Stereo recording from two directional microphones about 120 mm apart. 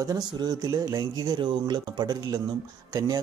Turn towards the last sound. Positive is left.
turn(degrees=-30)  # may be behind; listen again after turning